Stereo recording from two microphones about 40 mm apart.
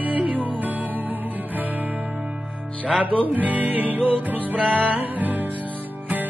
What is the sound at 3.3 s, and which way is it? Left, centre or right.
Music, right.